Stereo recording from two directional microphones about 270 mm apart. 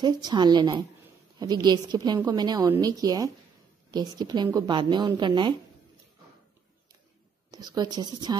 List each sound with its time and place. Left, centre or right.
0.0 s a woman's voice: centre
7.5 s a woman's voice: centre